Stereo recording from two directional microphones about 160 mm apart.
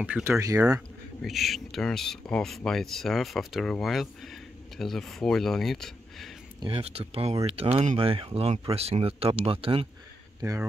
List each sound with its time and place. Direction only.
0.0 s speech: 10° right (ahead or behind)
1.2 s speech: centre (ahead or behind)
6.6 s speech: 35° right (ahead or behind)